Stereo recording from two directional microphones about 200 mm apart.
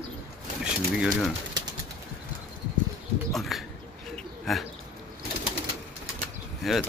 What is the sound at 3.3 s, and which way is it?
Bird, centre (ahead or behind).